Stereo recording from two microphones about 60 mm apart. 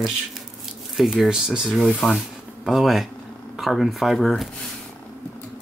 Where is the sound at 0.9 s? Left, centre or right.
Centre.